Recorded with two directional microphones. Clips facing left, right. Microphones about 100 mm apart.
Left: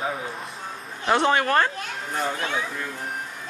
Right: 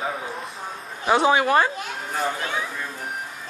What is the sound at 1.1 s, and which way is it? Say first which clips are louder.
Speech: right 2 dB; 5° right (ahead or behind).